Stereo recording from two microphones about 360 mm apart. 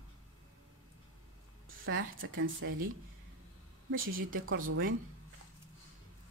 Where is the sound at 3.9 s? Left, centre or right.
Right.